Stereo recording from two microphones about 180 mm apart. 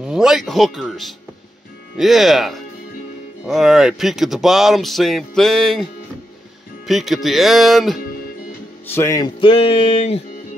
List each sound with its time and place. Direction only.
0.0 s speech: 5° right (ahead or behind)
6.9 s speech: centre (ahead or behind)
8.8 s speech: 15° left (ahead or behind); by 10.2 s 35° left (ahead or behind)